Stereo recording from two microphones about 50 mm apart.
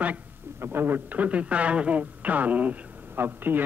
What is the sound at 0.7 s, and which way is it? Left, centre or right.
A man's voice, right.